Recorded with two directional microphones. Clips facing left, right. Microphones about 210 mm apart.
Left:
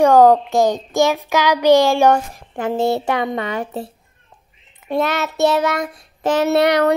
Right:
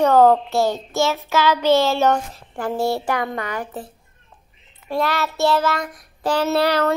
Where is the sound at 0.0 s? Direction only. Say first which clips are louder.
Left 3 dB; 15° left (ahead or behind).